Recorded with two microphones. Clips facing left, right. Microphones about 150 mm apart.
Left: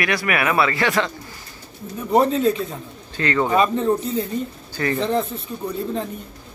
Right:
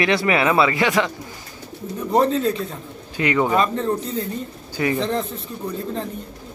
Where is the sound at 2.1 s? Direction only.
5° left (ahead or behind).